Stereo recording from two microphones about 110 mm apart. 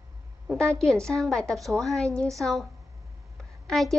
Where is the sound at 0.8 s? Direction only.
5° left (ahead or behind).